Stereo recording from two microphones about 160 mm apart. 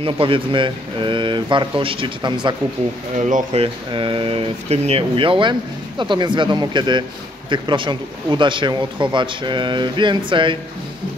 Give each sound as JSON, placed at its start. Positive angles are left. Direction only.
{"t": 0.0, "sound": "speech", "side_deg": -35}
{"t": 3.2, "sound": "speech", "side_deg": -55}
{"t": 3.5, "sound": "speech", "side_deg": -35}